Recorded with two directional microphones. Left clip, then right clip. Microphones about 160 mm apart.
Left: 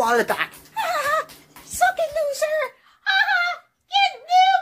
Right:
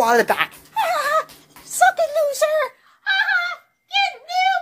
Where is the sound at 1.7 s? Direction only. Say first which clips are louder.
Right 4 dB; 25° right (ahead or behind).